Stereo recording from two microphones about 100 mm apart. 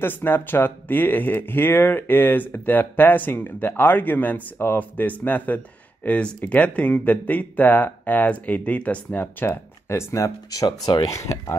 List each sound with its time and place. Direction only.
0.0 s speech: 20° left (ahead or behind)